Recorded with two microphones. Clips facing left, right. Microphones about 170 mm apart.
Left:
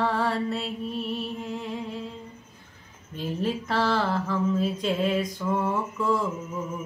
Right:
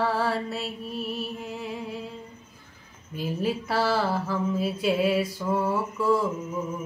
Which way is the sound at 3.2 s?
5° right (ahead or behind).